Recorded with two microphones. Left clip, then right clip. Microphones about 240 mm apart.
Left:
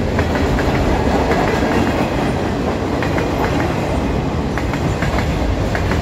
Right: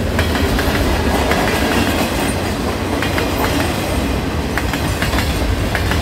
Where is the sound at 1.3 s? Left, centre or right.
Right.